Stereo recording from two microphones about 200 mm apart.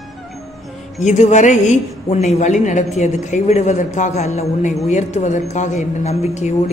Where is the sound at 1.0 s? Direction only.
35° left (ahead or behind).